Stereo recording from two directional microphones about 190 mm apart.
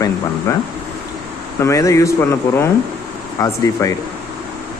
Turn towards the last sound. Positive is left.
turn(degrees=15)  # may be behind; listen again after turning